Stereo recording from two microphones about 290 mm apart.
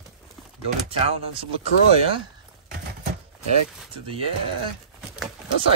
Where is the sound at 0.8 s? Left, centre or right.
Centre.